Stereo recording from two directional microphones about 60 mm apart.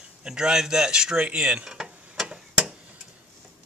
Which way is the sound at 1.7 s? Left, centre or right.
Centre.